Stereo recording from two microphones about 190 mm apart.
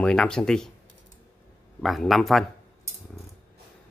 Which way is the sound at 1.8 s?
Centre (ahead or behind).